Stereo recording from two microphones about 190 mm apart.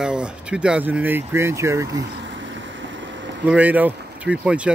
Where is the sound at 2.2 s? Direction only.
75° right (ahead or behind).